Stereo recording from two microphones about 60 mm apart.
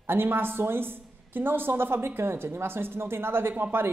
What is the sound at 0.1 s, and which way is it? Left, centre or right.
A woman's voice, right.